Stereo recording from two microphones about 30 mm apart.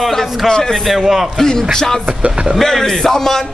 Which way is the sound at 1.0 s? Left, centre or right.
Centre.